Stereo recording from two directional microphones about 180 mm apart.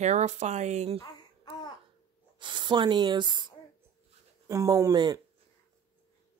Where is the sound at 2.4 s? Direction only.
25° right (ahead or behind).